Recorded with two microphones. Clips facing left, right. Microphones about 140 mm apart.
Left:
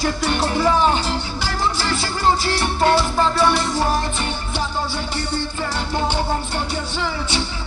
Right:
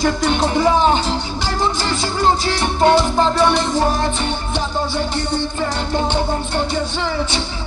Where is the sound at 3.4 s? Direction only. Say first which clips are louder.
Right 3 dB; 5° left (ahead or behind).